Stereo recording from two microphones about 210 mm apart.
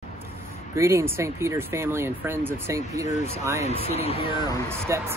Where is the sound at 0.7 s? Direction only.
15° right (ahead or behind).